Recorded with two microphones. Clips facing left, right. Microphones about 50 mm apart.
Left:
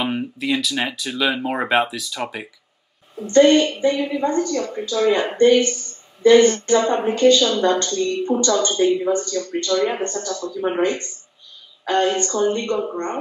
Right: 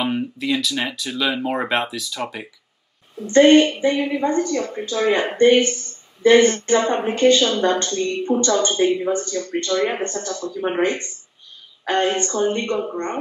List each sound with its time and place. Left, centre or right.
0.0 s speech: centre
3.3 s a woman's voice: right